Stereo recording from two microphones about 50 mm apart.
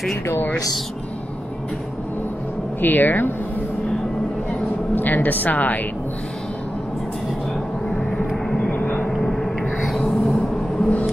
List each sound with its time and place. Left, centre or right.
2.8 s a woman's voice: left
4.9 s a woman's voice: left
7.9 s vehicle: left
9.1 s a sound: centre